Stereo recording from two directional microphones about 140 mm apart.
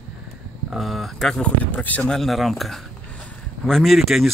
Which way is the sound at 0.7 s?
Centre (ahead or behind).